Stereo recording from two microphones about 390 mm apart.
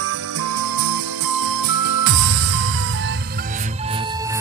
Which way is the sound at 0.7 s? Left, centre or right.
Right.